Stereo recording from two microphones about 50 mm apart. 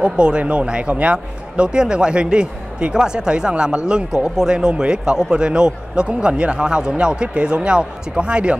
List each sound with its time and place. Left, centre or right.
0.0 s speech: centre